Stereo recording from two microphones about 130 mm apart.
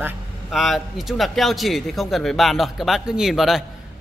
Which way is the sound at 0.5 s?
Centre (ahead or behind).